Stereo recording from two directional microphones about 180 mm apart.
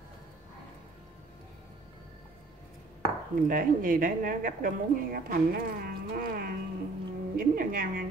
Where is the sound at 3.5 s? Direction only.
50° right (ahead or behind).